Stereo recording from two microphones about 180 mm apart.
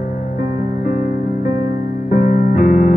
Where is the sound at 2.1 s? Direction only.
50° left (ahead or behind).